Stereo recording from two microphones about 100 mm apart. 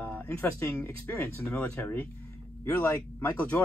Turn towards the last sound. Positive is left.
turn(degrees=20)  # may be behind; listen again after turning